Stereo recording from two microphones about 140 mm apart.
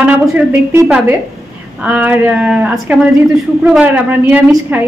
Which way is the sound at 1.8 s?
10° right (ahead or behind).